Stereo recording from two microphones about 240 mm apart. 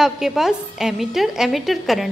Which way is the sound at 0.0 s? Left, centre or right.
Centre.